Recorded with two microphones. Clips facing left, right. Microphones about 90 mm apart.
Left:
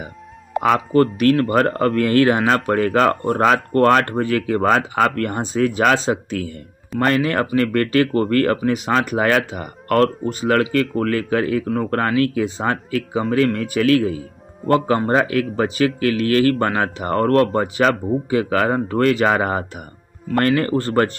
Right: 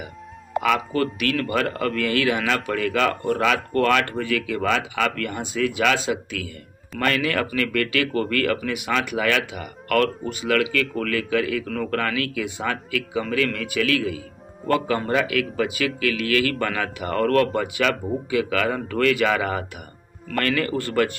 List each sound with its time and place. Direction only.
0.6 s speech: 40° left (ahead or behind)